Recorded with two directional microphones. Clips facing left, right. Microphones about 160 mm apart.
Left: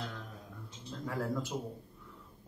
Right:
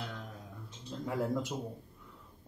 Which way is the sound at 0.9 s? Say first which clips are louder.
Right 2 dB; 20° right (ahead or behind).